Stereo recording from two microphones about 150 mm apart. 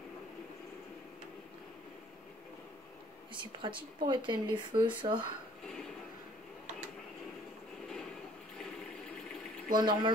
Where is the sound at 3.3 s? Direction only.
35° right (ahead or behind).